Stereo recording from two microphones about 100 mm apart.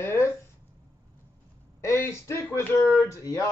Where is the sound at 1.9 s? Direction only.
25° left (ahead or behind).